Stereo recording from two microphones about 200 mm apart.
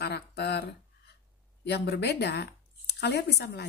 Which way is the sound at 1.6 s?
55° left (ahead or behind).